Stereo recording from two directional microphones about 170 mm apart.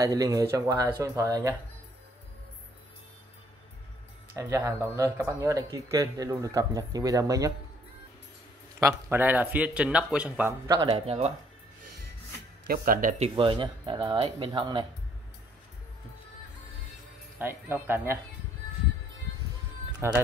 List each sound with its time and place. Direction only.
0.0 s speech: 20° right (ahead or behind)
4.4 s speech: 15° right (ahead or behind)
8.7 s a man's voice: 10° right (ahead or behind)
10.9 s speech: 35° right (ahead or behind)
12.6 s speech: 60° right (ahead or behind)
13.2 s speech: 30° right (ahead or behind)
17.4 s a man's voice: 15° right (ahead or behind)
20.0 s a man's voice: 15° right (ahead or behind)